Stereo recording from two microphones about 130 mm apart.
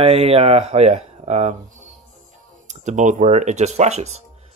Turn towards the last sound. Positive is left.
turn(degrees=-60)  # may be behind; listen again after turning